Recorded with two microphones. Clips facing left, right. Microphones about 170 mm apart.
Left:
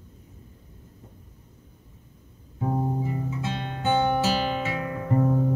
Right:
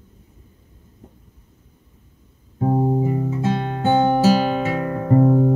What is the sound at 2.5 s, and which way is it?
Music, 40° right (ahead or behind).